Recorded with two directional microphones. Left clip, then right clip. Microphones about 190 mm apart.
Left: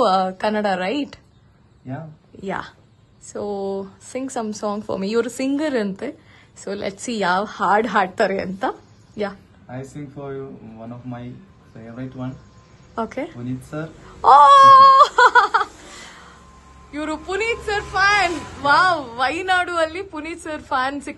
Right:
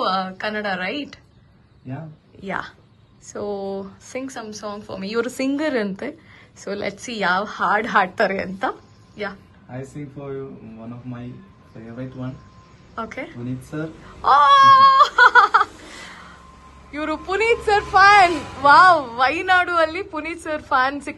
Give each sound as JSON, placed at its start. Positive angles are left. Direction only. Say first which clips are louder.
{"t": 0.0, "sound": "a woman's voice", "louder": "left 5 dB", "side_deg": 30}
{"t": 2.4, "sound": "a woman's voice", "louder": "even", "side_deg": 20}
{"t": 5.2, "sound": "a woman's voice", "louder": "even", "side_deg": 15}
{"t": 12.9, "sound": "a woman's voice", "louder": "left 4 dB", "side_deg": 25}
{"t": 13.7, "sound": "speech", "louder": "right 2 dB", "side_deg": 0}
{"t": 14.2, "sound": "wail", "louder": "left 3 dB", "side_deg": 30}
{"t": 16.9, "sound": "a woman's voice", "louder": "right 1 dB", "side_deg": 15}